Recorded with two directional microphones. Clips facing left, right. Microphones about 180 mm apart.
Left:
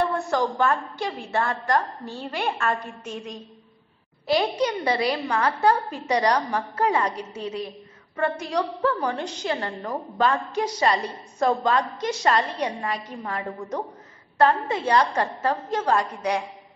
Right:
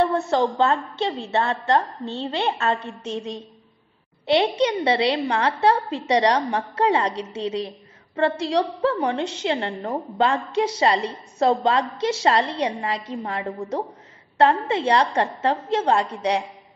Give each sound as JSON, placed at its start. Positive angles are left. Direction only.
{"t": 0.0, "sound": "a woman's voice", "side_deg": -25}
{"t": 4.3, "sound": "a woman's voice", "side_deg": -25}